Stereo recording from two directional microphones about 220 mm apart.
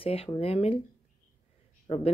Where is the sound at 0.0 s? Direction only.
25° left (ahead or behind).